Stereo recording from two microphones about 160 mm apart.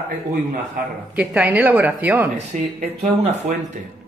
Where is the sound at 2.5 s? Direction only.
50° right (ahead or behind).